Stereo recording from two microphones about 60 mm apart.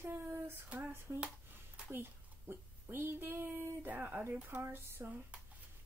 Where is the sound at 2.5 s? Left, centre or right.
Right.